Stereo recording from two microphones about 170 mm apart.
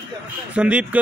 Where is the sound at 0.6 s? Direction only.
5° right (ahead or behind).